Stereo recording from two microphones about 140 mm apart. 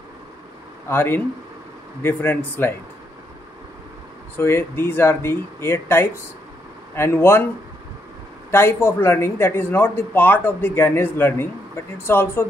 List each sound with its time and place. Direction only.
0.8 s speech: 15° left (ahead or behind)
4.4 s speech: 15° left (ahead or behind)
8.5 s speech: 15° left (ahead or behind)